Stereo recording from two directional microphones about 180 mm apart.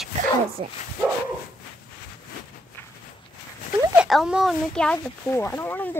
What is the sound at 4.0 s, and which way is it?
Speech, centre (ahead or behind).